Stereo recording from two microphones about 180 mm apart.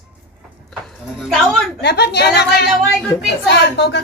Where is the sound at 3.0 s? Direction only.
5° left (ahead or behind).